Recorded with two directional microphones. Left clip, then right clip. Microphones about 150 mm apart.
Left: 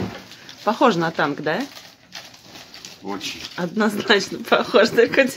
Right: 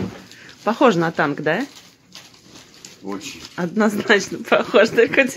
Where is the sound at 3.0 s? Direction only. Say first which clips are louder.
Even; 20° left (ahead or behind).